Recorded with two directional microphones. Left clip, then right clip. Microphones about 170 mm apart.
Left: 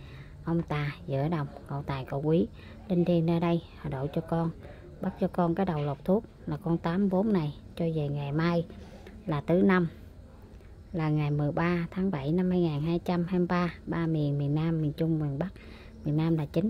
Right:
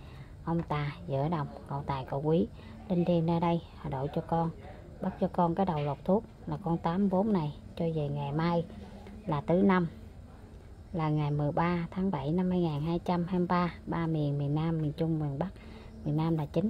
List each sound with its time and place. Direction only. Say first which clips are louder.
0.5 s speech: left 1 dB; 20° left (ahead or behind)
11.0 s speech: left 1 dB; 20° left (ahead or behind)